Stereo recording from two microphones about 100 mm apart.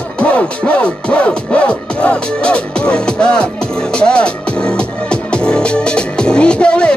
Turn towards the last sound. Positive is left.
turn(degrees=10)  # may be behind; listen again after turning